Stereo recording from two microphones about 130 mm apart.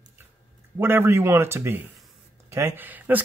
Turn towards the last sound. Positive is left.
turn(degrees=-15)  # may be behind; listen again after turning